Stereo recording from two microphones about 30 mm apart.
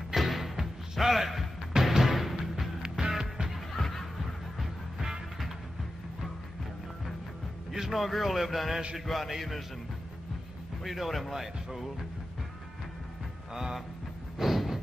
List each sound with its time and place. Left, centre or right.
0.1 s music: centre
2.8 s music: right
3.7 s a sound: centre
7.9 s speech: centre
10.8 s speech: centre
13.5 s music: centre
14.4 s a sound: centre